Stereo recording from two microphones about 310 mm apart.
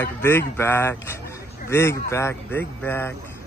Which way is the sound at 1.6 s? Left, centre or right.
Centre.